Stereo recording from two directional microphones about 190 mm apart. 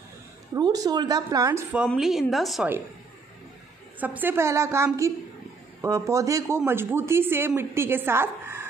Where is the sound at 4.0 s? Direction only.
10° right (ahead or behind).